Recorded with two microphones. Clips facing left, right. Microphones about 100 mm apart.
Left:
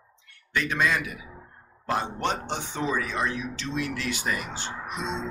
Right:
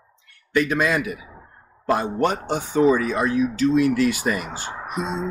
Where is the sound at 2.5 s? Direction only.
45° right (ahead or behind).